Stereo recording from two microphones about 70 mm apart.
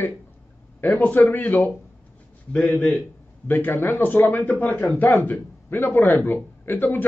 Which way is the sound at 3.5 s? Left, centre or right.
Left.